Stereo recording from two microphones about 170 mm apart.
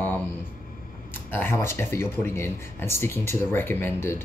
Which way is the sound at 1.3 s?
15° left (ahead or behind).